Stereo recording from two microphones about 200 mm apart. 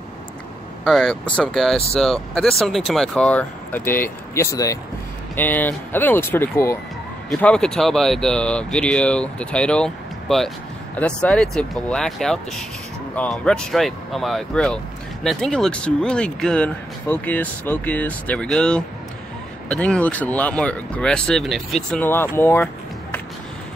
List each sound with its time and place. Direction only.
0.8 s speech: centre (ahead or behind)